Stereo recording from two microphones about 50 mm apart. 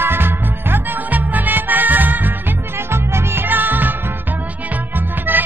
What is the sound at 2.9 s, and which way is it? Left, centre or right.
Music, right.